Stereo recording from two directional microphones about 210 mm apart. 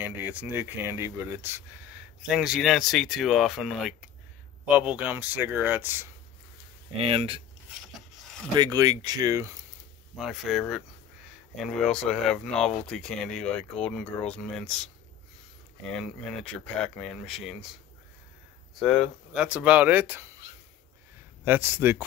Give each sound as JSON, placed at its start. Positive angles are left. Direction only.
{"t": 0.0, "sound": "speech", "side_deg": -10}
{"t": 7.0, "sound": "speech", "side_deg": -25}
{"t": 8.5, "sound": "speech", "side_deg": -20}
{"t": 10.1, "sound": "speech", "side_deg": 0}
{"t": 15.9, "sound": "speech", "side_deg": 5}
{"t": 19.3, "sound": "speech", "side_deg": -5}
{"t": 21.5, "sound": "speech", "side_deg": -10}